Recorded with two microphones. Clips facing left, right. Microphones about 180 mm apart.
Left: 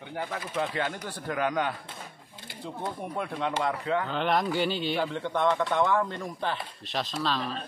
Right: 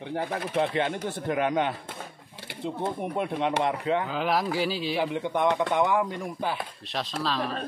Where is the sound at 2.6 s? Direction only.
25° right (ahead or behind).